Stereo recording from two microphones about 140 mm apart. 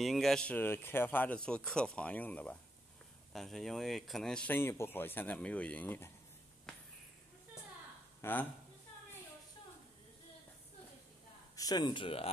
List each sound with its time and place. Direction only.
0.0 s speech: centre (ahead or behind)
8.2 s speech: 15° left (ahead or behind)
11.5 s speech: 30° left (ahead or behind)